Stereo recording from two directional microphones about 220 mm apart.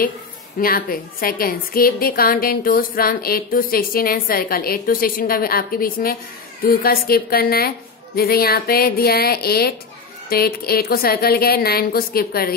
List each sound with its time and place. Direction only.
0.6 s a woman's voice: 40° left (ahead or behind)